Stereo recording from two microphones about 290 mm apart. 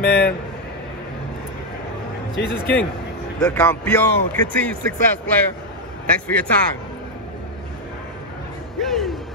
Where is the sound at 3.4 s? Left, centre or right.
Centre.